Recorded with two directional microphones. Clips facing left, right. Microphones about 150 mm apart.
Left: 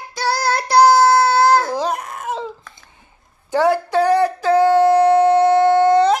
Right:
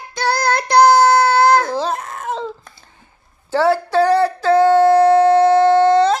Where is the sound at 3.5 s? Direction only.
15° left (ahead or behind).